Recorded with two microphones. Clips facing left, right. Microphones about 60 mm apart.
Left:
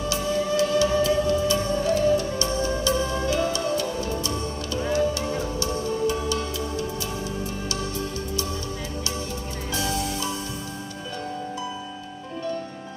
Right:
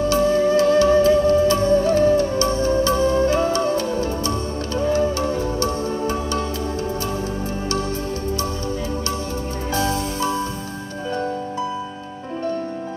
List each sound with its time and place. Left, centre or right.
0.0 s music: right
9.8 s music: right